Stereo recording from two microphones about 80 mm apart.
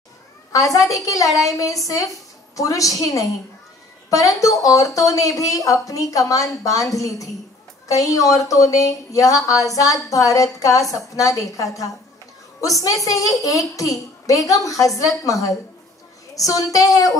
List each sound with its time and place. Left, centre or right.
0.5 s a woman's voice: left